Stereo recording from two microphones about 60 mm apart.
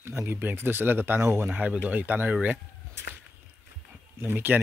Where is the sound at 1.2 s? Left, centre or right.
Right.